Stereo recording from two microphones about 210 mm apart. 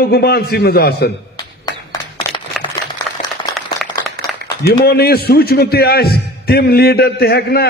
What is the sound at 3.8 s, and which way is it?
Applause, centre (ahead or behind).